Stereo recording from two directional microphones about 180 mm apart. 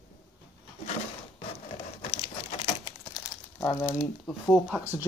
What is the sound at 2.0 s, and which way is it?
Crumpling, 30° left (ahead or behind).